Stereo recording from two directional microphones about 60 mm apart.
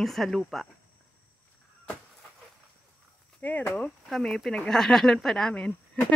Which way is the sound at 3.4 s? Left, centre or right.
Left.